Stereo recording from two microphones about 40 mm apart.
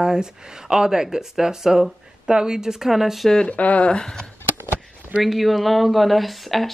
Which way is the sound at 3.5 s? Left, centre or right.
Left.